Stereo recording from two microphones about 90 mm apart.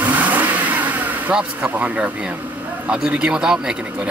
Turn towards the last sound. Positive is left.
turn(degrees=-10)  # may be behind; listen again after turning